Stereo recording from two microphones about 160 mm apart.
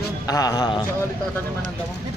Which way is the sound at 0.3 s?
20° left (ahead or behind).